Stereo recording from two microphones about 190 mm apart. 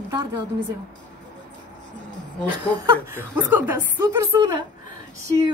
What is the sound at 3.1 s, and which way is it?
Speech, 10° right (ahead or behind).